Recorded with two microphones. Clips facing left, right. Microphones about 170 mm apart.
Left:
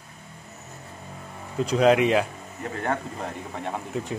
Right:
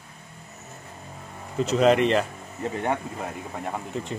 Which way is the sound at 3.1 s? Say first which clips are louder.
Even; 5° right (ahead or behind).